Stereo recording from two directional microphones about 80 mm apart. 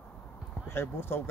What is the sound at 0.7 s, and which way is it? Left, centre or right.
Speech, left.